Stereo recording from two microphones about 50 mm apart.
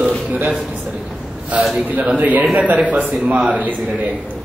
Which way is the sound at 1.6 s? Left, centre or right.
Centre.